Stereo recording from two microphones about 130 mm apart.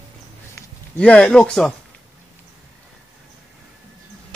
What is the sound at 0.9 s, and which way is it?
Speech, 10° left (ahead or behind).